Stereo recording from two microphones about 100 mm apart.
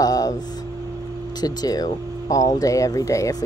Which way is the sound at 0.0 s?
40° left (ahead or behind).